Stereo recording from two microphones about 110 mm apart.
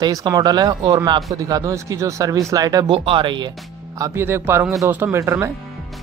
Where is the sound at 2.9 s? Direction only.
50° right (ahead or behind).